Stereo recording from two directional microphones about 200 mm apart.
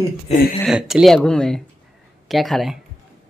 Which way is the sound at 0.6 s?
5° right (ahead or behind).